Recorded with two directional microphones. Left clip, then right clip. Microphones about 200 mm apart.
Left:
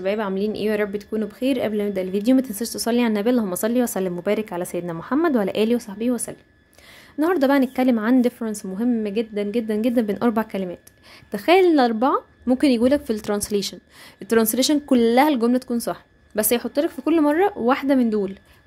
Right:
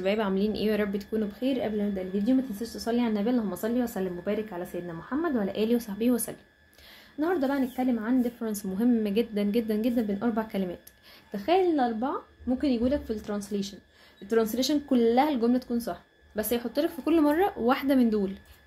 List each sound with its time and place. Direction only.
0.0 s a woman's voice: 25° left (ahead or behind)
7.2 s a woman's voice: 45° left (ahead or behind)
8.5 s a woman's voice: 25° left (ahead or behind); by 10.4 s 45° left (ahead or behind)
10.5 s a woman's voice: 30° left (ahead or behind)
11.3 s a woman's voice: 40° left (ahead or behind)